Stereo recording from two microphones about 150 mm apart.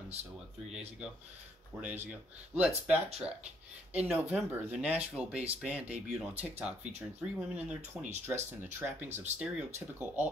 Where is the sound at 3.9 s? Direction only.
5° right (ahead or behind).